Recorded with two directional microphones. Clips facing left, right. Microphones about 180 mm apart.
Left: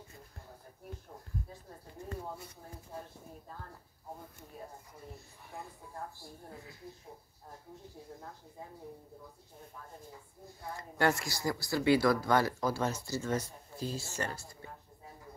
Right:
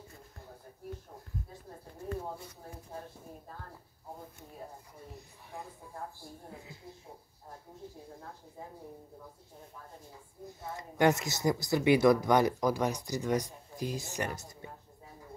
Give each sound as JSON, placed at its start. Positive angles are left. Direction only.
{"t": 10.6, "sound": "speech", "side_deg": -20}